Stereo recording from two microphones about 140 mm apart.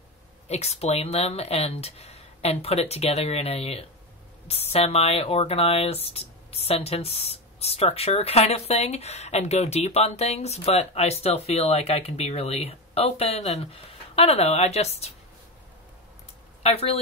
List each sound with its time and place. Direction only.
0.5 s speech: 50° left (ahead or behind)
16.6 s speech: 45° left (ahead or behind)